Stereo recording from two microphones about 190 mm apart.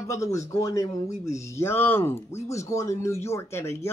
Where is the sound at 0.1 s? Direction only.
15° left (ahead or behind).